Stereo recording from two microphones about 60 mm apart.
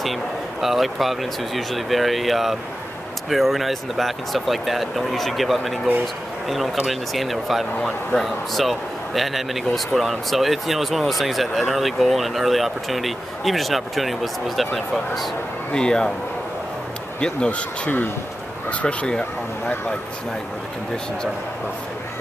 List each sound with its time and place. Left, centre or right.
0.0 s speech: centre
15.7 s speech: centre
17.2 s speech: centre